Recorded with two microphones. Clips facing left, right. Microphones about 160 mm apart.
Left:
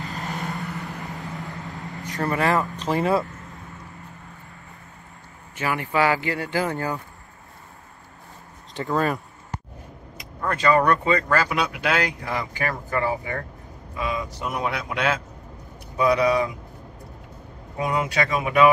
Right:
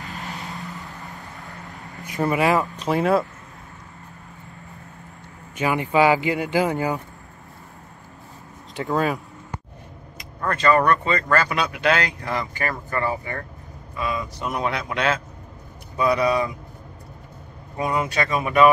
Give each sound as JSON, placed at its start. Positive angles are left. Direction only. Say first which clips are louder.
{"t": 0.4, "sound": "vehicle", "louder": "left 4 dB", "side_deg": 0}
{"t": 0.7, "sound": "vehicle", "louder": "left 4 dB", "side_deg": 75}
{"t": 1.0, "sound": "vehicle", "louder": "left 5 dB", "side_deg": 20}
{"t": 2.0, "sound": "speech", "louder": "right 3 dB", "side_deg": -10}
{"t": 5.6, "sound": "speech", "louder": "right 4 dB", "side_deg": -20}
{"t": 8.7, "sound": "a man's voice", "louder": "right 1 dB", "side_deg": 0}
{"t": 14.4, "sound": "a man's voice", "louder": "right 3 dB", "side_deg": 5}
{"t": 16.0, "sound": "speech", "louder": "left 1 dB", "side_deg": 15}
{"t": 17.7, "sound": "speech", "louder": "even", "side_deg": 10}